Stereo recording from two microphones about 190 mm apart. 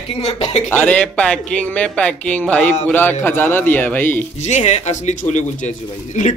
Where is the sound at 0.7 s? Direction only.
10° left (ahead or behind).